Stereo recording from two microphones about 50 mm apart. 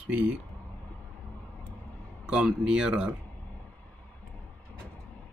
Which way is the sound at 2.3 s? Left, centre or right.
Centre.